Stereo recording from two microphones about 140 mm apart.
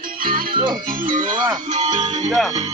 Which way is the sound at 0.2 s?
90° right.